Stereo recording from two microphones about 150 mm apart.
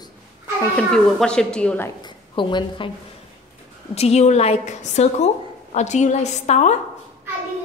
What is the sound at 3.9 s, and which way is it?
A woman's voice, 45° left (ahead or behind).